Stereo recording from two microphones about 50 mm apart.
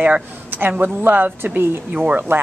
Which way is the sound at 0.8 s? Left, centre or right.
Right.